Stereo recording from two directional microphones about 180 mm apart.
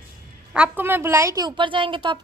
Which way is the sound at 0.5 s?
10° right (ahead or behind).